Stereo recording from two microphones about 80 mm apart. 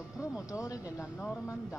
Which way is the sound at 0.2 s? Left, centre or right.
Left.